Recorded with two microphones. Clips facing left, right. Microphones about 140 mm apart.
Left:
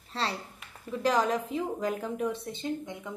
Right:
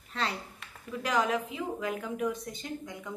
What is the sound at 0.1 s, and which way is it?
A woman's voice, 30° left (ahead or behind).